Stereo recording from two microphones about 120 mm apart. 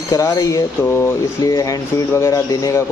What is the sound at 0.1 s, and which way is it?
Speech, 30° left (ahead or behind).